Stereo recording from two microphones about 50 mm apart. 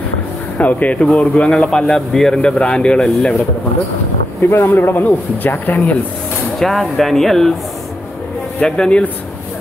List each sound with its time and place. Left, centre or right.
0.6 s a man's voice: left
4.4 s speech: left
6.6 s speech: centre
8.6 s a man's voice: centre